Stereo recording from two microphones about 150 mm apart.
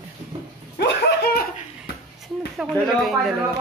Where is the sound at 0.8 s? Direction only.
90° left.